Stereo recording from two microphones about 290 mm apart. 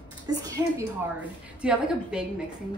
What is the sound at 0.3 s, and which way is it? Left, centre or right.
A woman's voice, centre.